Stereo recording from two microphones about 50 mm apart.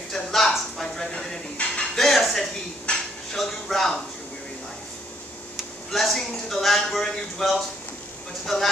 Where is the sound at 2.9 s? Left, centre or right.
Left.